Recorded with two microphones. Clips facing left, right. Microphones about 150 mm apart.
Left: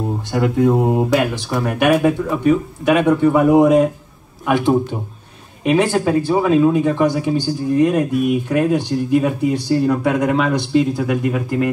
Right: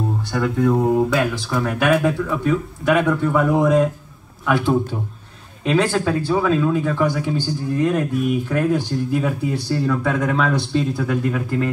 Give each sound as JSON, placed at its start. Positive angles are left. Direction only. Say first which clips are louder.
{"t": 0.3, "sound": "speech", "louder": "left 3 dB", "side_deg": 20}